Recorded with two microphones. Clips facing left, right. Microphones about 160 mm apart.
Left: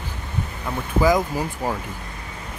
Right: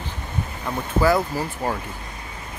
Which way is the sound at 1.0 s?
15° left (ahead or behind).